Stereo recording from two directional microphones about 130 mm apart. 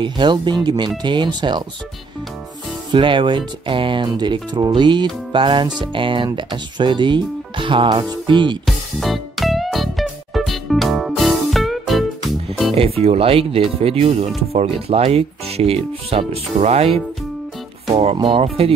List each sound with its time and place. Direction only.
0.0 s speech: 35° right (ahead or behind)
2.9 s speech: 40° right (ahead or behind)
8.6 s music: centre (ahead or behind)
12.7 s speech: 50° right (ahead or behind)
18.1 s speech: 45° right (ahead or behind)